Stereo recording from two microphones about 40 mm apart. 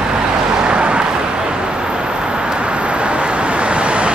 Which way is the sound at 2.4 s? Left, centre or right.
Right.